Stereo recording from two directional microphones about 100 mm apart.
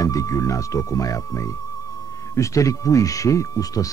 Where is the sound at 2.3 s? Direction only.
35° left (ahead or behind).